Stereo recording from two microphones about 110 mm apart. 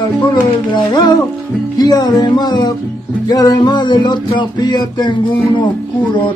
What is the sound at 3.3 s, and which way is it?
Music, 35° left (ahead or behind).